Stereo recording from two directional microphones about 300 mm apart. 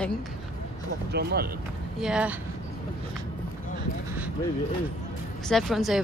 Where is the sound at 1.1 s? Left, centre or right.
Right.